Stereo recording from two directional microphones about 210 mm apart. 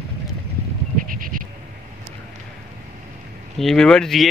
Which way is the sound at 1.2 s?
40° right (ahead or behind).